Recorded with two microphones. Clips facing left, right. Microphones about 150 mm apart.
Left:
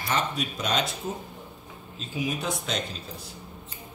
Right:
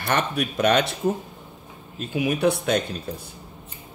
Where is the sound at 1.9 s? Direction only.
60° right (ahead or behind).